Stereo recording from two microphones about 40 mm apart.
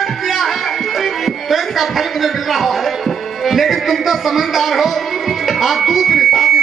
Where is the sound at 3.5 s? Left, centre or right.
Centre.